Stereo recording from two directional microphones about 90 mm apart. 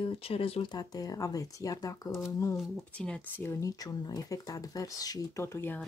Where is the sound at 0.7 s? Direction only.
45° left (ahead or behind).